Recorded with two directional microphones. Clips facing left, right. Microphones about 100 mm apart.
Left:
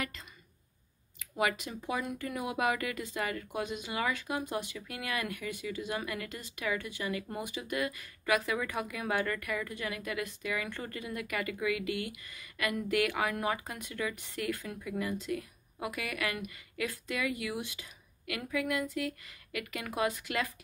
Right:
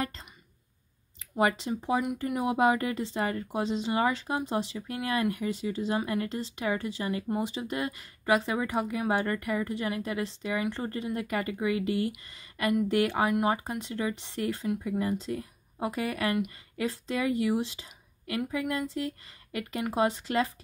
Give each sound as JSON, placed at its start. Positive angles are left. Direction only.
{"t": 1.2, "sound": "a woman's voice", "side_deg": -30}